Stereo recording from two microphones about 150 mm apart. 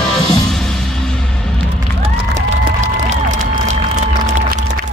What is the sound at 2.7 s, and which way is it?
Crowd, 55° right (ahead or behind).